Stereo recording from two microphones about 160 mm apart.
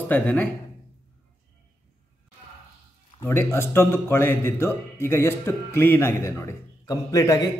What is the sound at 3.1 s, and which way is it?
A man's voice, 15° left (ahead or behind).